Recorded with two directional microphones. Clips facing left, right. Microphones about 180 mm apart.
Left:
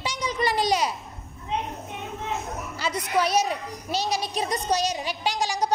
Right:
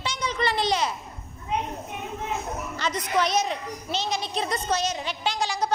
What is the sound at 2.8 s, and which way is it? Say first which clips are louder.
A woman's voice: left 1 dB; 5° left (ahead or behind).